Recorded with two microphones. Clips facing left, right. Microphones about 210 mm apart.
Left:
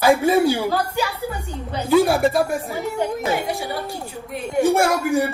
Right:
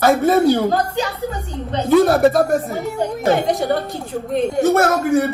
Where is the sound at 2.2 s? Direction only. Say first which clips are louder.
Right 5 dB; 50° right (ahead or behind).